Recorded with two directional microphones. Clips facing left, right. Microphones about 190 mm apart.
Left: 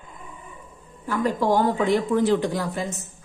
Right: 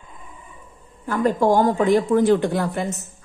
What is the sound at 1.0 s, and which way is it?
Speech, 45° right (ahead or behind).